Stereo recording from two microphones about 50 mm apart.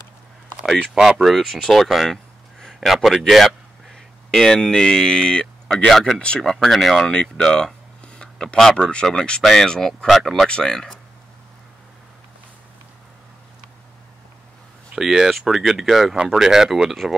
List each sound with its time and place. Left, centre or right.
0.9 s speech: centre
1.2 s speech: centre
2.6 s a sound: centre
4.3 s speech: centre
5.7 s speech: centre
7.1 s speech: centre
15.0 s speech: centre